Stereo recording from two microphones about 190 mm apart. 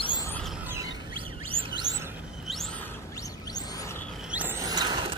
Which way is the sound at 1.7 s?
20° right (ahead or behind).